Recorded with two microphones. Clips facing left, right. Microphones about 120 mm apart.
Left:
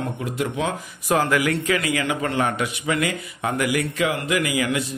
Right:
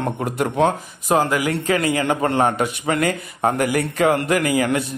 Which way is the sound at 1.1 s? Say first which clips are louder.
Right 3 dB; 25° right (ahead or behind).